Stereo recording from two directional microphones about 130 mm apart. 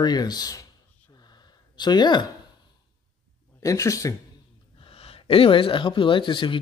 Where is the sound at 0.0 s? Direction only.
30° left (ahead or behind).